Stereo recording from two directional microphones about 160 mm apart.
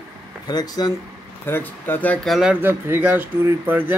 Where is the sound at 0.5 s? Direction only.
25° left (ahead or behind).